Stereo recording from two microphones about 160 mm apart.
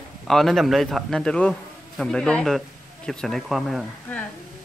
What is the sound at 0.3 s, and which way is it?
A man's voice, centre (ahead or behind).